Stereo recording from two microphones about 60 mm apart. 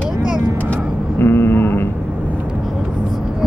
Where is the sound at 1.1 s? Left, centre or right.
Left.